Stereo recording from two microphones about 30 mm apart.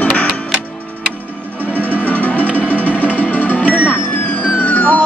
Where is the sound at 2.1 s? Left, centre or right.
Left.